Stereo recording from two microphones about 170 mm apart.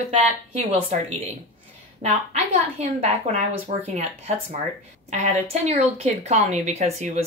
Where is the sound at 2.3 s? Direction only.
35° right (ahead or behind).